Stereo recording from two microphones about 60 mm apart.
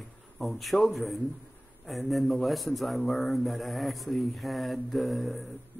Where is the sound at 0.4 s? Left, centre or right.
Centre.